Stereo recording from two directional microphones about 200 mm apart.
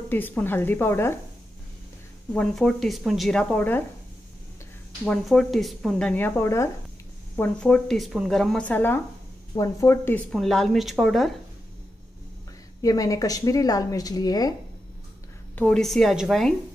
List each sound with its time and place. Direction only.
0.1 s a woman's voice: 10° left (ahead or behind)
2.3 s speech: 5° left (ahead or behind)
5.0 s speech: 5° left (ahead or behind)
12.8 s a woman's voice: 15° left (ahead or behind)
15.5 s speech: 5° left (ahead or behind)